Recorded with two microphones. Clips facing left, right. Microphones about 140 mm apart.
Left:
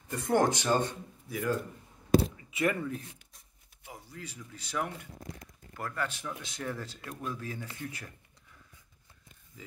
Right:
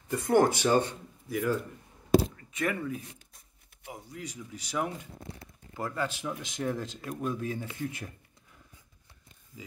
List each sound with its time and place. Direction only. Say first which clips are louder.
0.1 s speech: right 3 dB; centre (ahead or behind)
2.5 s speech: left 1 dB; centre (ahead or behind)
3.8 s speech: right 4 dB; 15° right (ahead or behind)